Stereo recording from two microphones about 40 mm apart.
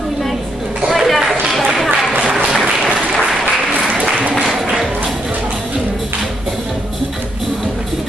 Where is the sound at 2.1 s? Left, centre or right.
Right.